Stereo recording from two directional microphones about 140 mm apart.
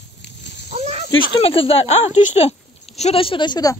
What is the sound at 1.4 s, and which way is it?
Speech, 40° left (ahead or behind).